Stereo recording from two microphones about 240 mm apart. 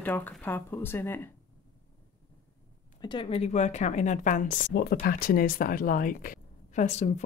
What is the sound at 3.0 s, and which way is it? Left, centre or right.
A woman's voice, centre.